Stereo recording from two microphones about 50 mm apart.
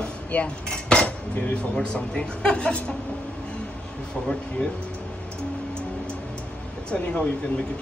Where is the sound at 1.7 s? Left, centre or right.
Centre.